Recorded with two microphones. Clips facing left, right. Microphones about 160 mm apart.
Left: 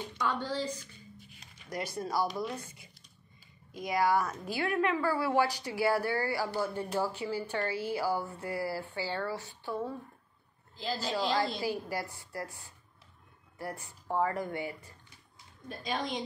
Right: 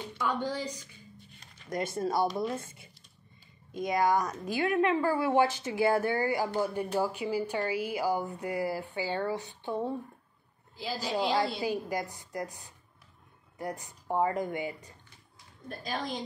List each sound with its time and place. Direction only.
0.3 s a woman's voice: 15° right (ahead or behind)
15.8 s a woman's voice: centre (ahead or behind)